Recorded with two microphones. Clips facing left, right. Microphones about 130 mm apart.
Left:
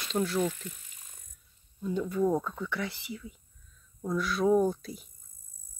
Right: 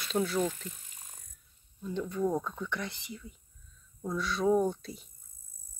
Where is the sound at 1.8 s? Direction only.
10° left (ahead or behind).